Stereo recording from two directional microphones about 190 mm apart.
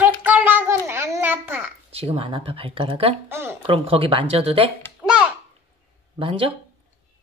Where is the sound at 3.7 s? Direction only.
30° right (ahead or behind).